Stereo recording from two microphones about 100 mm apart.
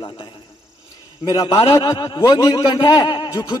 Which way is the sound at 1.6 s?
65° left (ahead or behind).